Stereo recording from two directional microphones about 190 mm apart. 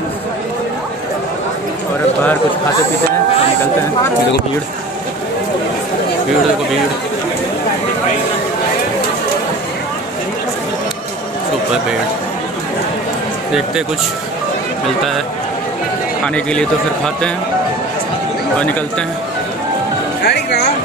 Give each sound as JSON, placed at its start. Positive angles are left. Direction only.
{"t": 13.5, "sound": "a man's voice", "side_deg": -5}
{"t": 16.3, "sound": "a man's voice", "side_deg": 5}
{"t": 20.2, "sound": "speech", "side_deg": 60}